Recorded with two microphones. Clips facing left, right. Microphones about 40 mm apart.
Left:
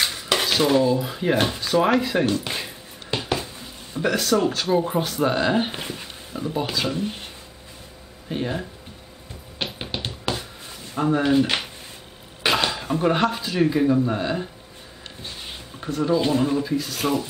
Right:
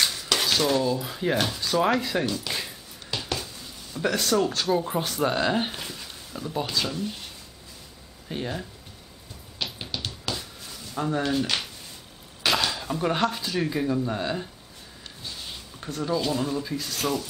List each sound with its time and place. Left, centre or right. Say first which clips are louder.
0.0 s dishes: left 2 dB; centre
1.4 s speech: left 4 dB; left
2.2 s a sound: left 5 dB; left
4.4 s speech: left 3 dB; centre
5.7 s speech: left 4 dB; left
7.0 s speech: left 4 dB; left
8.3 s speech: left 5 dB; centre
9.7 s a sound: left 4 dB; left
12.4 s speech: left 3 dB; left
15.2 s a sound: left 1 dB; left
16.2 s speech: left 5 dB; left
16.6 s speech: left 6 dB; centre
17.0 s speech: left 3 dB; left